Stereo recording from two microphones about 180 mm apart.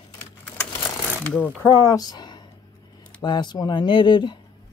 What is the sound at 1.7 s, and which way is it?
A man's voice, 20° left (ahead or behind).